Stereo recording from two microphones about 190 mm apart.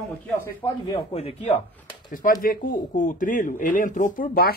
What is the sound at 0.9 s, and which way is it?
Speech, 30° left (ahead or behind).